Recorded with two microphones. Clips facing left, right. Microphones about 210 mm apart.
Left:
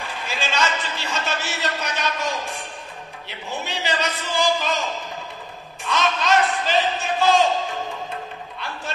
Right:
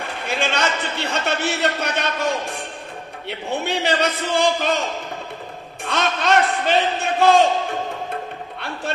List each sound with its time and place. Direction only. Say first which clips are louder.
0.0 s a man's voice: right 5 dB; 60° right (ahead or behind)
5.9 s a man's voice: right 1 dB; 60° right (ahead or behind)